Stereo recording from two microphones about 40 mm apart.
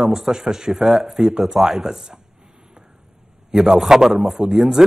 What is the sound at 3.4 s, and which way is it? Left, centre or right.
Speech, centre.